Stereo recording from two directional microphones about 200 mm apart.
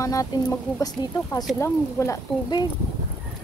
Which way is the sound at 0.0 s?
15° left (ahead or behind).